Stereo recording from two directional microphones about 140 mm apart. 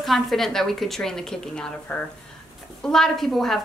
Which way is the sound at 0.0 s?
Centre (ahead or behind).